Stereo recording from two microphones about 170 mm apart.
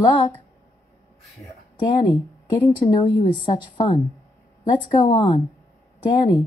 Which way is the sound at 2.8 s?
30° left (ahead or behind).